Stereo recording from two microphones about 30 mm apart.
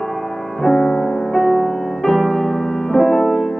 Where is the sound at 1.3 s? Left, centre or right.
Centre.